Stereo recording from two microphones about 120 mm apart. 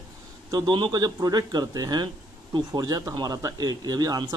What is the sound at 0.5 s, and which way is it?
Speech, 35° right (ahead or behind).